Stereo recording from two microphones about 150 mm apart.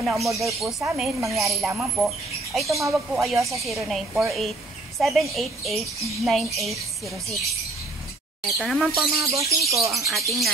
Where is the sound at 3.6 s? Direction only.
Centre (ahead or behind).